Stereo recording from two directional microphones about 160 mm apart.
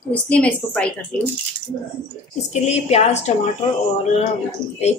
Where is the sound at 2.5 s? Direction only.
40° left (ahead or behind).